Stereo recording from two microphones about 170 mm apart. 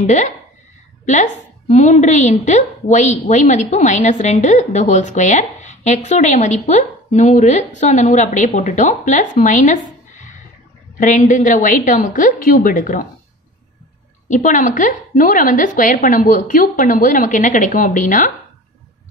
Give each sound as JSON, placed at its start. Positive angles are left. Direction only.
{"t": 0.0, "sound": "a woman's voice", "side_deg": 45}
{"t": 14.3, "sound": "a woman's voice", "side_deg": 50}